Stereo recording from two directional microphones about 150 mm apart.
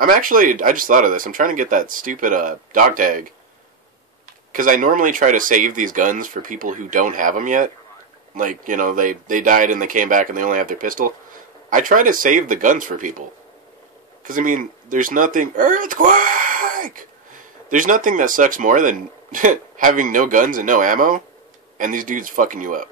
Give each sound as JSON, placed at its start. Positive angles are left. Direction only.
{"t": 0.0, "sound": "speech", "side_deg": -65}
{"t": 4.5, "sound": "speech", "side_deg": -65}
{"t": 14.2, "sound": "speech", "side_deg": -65}